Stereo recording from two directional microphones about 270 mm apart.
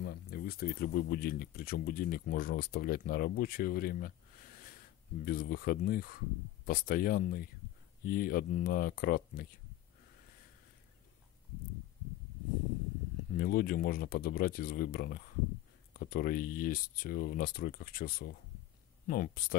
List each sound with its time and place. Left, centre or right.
0.0 s speech: left
13.3 s speech: left